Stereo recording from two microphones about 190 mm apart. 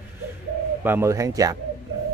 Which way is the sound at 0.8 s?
15° right (ahead or behind).